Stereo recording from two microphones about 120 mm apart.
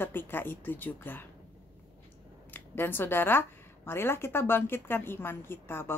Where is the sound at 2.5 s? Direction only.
15° left (ahead or behind).